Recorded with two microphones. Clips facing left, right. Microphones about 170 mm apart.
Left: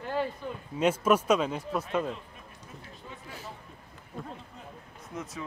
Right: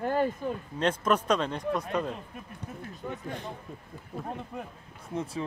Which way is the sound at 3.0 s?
55° right (ahead or behind).